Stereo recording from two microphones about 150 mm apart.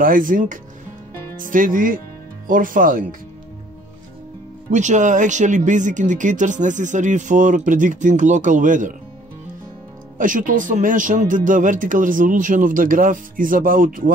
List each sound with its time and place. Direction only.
0.0 s speech: 70° right (ahead or behind)
4.6 s speech: 55° right (ahead or behind)
10.1 s speech: 60° right (ahead or behind)